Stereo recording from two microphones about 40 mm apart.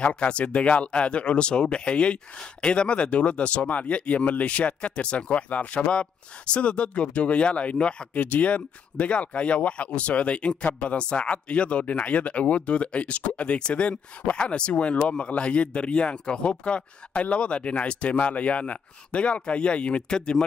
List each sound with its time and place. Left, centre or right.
0.0 s speech: left
8.1 s speech: left